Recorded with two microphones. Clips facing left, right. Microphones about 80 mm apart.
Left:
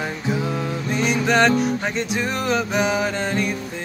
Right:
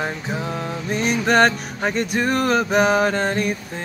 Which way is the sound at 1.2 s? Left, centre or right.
Right.